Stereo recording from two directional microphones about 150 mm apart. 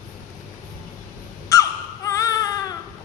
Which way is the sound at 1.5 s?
20° left (ahead or behind).